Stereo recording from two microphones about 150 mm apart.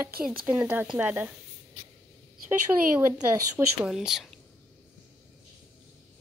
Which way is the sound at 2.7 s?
15° right (ahead or behind).